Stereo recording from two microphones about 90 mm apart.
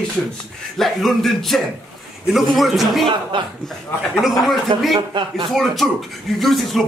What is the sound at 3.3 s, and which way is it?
Speech, 65° right (ahead or behind).